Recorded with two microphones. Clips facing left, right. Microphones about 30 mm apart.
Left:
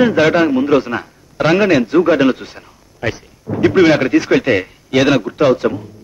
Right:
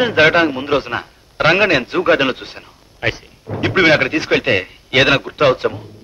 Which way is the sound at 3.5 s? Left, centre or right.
Right.